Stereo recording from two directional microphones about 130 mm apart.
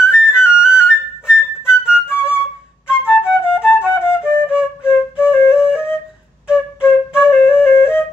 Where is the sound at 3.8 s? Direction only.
20° left (ahead or behind).